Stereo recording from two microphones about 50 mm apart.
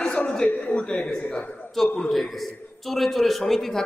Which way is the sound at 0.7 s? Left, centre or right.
Left.